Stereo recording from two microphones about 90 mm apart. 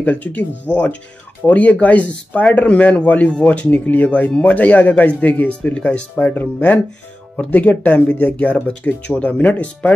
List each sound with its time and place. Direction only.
0.0 s speech: 20° left (ahead or behind)